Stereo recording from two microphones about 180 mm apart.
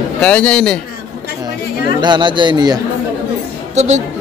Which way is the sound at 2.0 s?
25° right (ahead or behind).